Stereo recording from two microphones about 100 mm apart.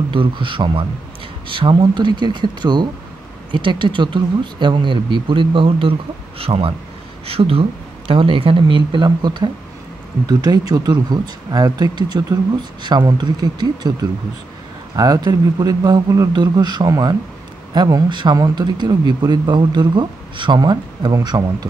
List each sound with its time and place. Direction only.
0.1 s a woman's voice: 55° right (ahead or behind); by 7.6 s 70° right (ahead or behind)
8.1 s speech: 60° right (ahead or behind); by 13.9 s 45° right (ahead or behind)
15.0 s speech: 40° right (ahead or behind)
16.3 s speech: 45° right (ahead or behind)